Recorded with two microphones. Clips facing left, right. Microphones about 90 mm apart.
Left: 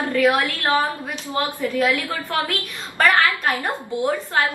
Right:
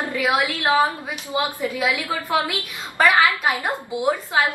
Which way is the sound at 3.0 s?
5° right (ahead or behind).